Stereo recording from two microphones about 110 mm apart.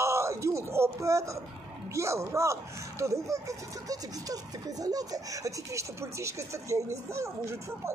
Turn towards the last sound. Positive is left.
turn(degrees=-25)  # may be behind; listen again after turning